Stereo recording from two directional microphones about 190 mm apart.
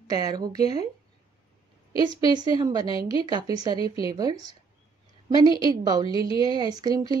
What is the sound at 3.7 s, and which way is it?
Speech, 30° left (ahead or behind).